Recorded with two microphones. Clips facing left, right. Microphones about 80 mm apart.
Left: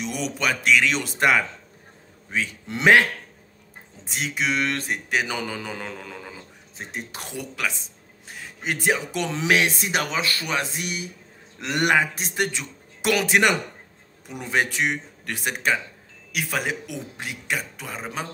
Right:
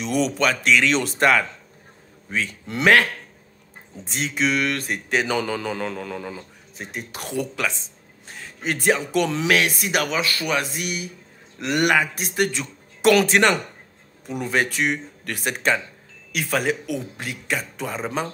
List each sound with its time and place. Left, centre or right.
0.0 s a man's voice: centre
4.1 s speech: centre
4.6 s a man's voice: left
5.1 s speech: centre
6.8 s a man's voice: left
7.3 s a man's voice: centre
17.8 s speech: centre